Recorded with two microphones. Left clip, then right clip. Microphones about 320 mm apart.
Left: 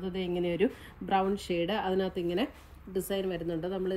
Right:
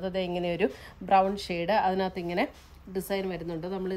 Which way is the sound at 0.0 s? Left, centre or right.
Right.